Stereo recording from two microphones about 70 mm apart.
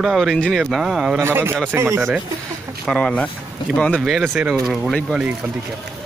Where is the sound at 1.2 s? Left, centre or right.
Right.